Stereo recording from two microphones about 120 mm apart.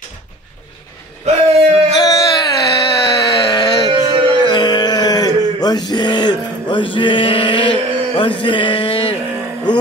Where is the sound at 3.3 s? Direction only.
30° left (ahead or behind).